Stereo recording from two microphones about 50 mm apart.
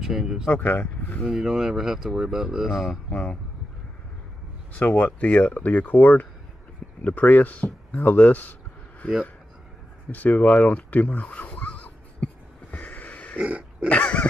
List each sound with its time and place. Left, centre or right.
0.0 s speech: centre
0.5 s speech: left
1.3 s speech: centre
3.1 s speech: left
4.7 s speech: left
10.1 s speech: left
12.7 s a sound: left
13.5 s pig: right
13.8 s a sound: left